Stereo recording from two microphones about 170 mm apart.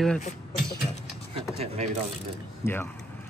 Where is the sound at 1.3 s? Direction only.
35° right (ahead or behind).